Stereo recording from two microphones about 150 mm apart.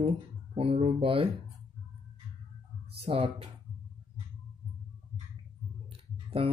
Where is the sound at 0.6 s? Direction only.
40° right (ahead or behind).